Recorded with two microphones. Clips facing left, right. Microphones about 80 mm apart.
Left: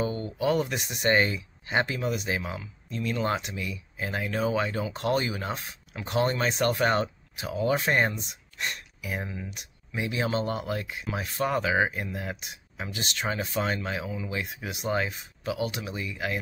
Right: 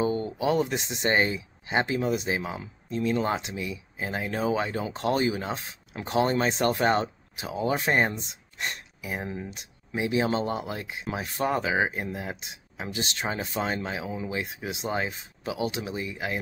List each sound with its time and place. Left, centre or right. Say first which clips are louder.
0.0 s speech: right 2 dB; right